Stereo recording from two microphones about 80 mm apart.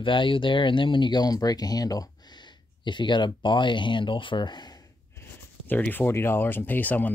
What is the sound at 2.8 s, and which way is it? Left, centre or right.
Speech, left.